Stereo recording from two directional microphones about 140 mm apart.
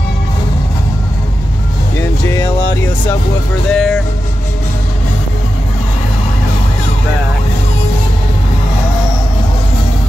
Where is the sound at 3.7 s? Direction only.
Centre (ahead or behind).